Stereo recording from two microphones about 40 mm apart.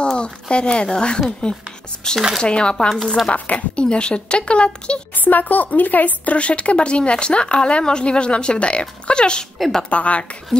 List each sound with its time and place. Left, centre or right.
0.0 s speech: left
3.3 s a woman's voice: left
3.7 s speech: left
5.1 s speech: left
9.6 s a woman's voice: centre
9.8 s a woman's voice: left